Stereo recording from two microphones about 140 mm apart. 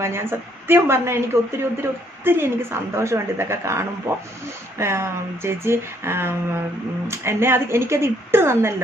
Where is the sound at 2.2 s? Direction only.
15° right (ahead or behind).